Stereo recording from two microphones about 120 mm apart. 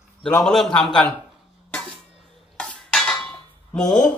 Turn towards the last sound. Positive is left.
turn(degrees=5)  # may be behind; listen again after turning